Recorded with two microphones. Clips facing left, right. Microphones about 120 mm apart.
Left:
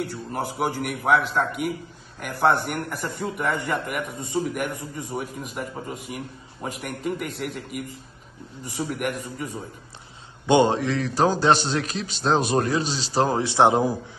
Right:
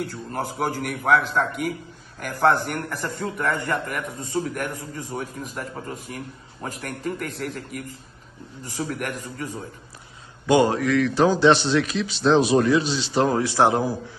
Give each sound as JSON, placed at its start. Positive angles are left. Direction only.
{"t": 0.0, "sound": "a man's voice", "side_deg": 5}
{"t": 2.9, "sound": "a man's voice", "side_deg": 15}
{"t": 10.4, "sound": "a man's voice", "side_deg": 25}